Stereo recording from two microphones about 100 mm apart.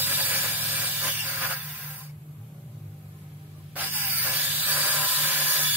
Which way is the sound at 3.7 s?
20° right (ahead or behind).